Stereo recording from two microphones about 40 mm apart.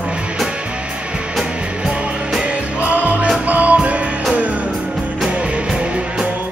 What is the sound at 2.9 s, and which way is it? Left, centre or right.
Music, right.